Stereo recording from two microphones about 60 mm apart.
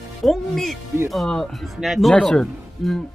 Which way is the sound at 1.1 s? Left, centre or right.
Centre.